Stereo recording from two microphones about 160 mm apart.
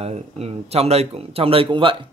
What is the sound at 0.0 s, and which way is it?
Speech, 40° right (ahead or behind).